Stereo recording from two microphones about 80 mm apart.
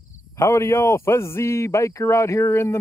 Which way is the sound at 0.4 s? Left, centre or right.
Left.